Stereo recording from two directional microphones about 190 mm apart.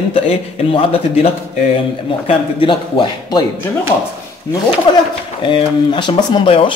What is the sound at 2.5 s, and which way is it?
Speech, 25° left (ahead or behind).